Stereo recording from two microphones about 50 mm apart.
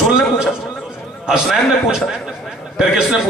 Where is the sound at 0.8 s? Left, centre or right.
Centre.